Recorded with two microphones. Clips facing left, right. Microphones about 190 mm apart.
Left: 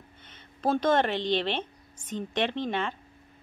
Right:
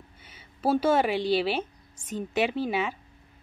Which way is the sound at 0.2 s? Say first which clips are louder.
Right 1 dB; 10° right (ahead or behind).